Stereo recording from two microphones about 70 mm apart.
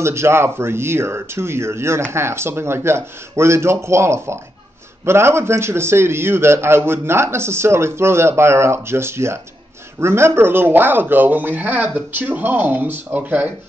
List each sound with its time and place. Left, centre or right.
0.0 s a man's voice: right